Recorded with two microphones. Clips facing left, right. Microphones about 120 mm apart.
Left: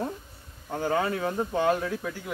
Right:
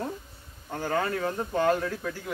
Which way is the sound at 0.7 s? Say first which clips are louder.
Left 2 dB; 10° left (ahead or behind).